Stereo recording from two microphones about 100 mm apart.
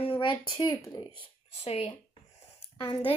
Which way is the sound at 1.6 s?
90° left.